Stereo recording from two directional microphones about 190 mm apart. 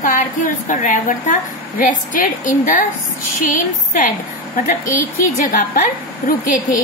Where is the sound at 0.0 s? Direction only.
45° left (ahead or behind).